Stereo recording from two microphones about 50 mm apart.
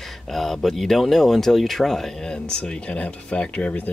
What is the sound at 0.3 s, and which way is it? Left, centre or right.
Speech, centre.